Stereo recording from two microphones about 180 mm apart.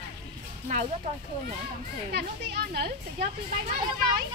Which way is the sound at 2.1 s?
65° right (ahead or behind).